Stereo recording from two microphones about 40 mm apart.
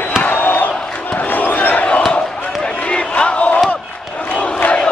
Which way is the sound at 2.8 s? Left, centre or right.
Left.